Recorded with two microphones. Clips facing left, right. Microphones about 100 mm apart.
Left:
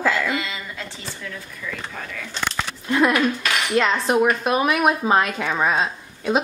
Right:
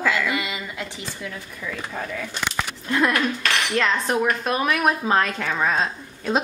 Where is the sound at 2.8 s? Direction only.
10° left (ahead or behind).